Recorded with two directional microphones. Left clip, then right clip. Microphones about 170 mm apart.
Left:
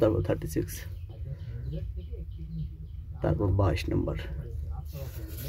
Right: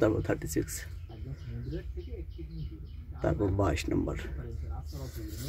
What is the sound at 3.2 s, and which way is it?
Speech, 10° left (ahead or behind).